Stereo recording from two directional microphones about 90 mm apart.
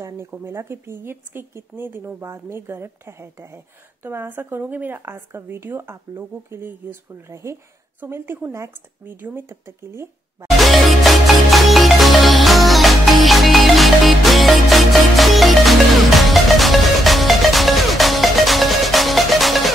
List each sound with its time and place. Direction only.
0.3 s speech: 30° right (ahead or behind)
10.6 s music: centre (ahead or behind)